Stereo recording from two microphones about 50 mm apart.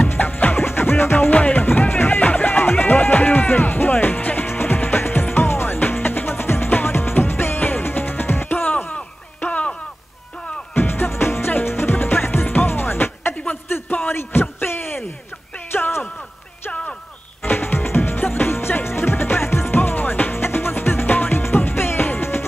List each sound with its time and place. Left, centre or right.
0.0 s music: left
1.3 s music: left
10.7 s music: left
13.7 s a sound: left
17.4 s music: left